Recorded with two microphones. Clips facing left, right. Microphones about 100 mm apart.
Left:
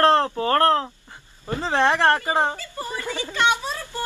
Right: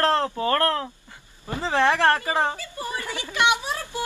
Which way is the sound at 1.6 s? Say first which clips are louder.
Left 1 dB; 20° left (ahead or behind).